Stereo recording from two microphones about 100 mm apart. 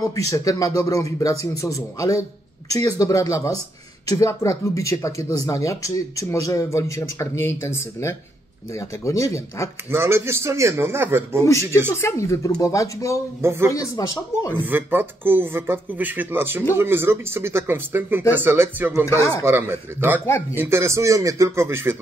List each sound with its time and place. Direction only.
0.1 s speech: 35° left (ahead or behind)
9.8 s speech: 25° right (ahead or behind)
12.0 s speech: 30° left (ahead or behind)
13.4 s speech: 25° right (ahead or behind)
13.7 s speech: 35° left (ahead or behind)
14.6 s speech: 20° right (ahead or behind)
19.0 s speech: 35° left (ahead or behind)
19.4 s speech: 25° right (ahead or behind)